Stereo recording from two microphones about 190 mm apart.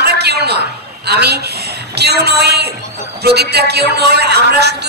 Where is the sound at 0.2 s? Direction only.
60° right (ahead or behind).